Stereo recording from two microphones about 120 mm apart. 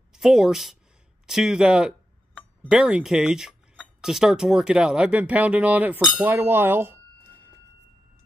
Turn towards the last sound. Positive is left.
turn(degrees=-20)  # may be behind; listen again after turning